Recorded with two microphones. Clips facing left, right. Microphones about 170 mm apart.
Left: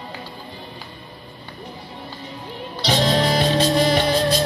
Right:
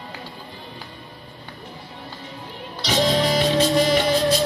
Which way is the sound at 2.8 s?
35° left (ahead or behind).